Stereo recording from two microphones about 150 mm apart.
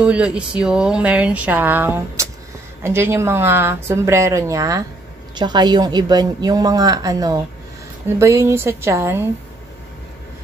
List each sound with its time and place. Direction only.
0.0 s a woman's voice: 5° right (ahead or behind)